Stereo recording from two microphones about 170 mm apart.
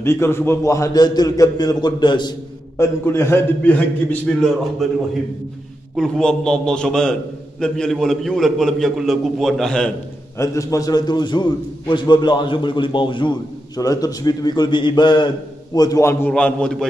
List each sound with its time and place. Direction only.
0.0 s a man's voice: 15° left (ahead or behind)
2.8 s a man's voice: 15° left (ahead or behind)
5.9 s a man's voice: 5° left (ahead or behind)
10.3 s a man's voice: 20° left (ahead or behind)